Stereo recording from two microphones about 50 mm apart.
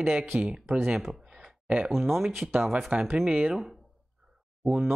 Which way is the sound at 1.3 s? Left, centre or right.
Right.